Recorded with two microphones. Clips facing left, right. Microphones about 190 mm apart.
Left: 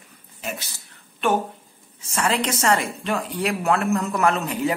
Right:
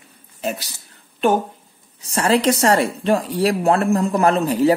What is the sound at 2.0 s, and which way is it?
A woman's voice, 35° right (ahead or behind).